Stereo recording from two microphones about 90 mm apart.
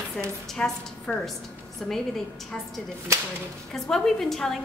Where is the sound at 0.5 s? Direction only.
5° left (ahead or behind).